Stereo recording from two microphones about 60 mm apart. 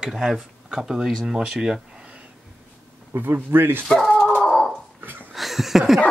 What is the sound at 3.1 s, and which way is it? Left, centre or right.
Speech, right.